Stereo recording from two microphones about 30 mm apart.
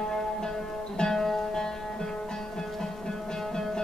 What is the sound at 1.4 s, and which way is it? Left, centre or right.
Music, left.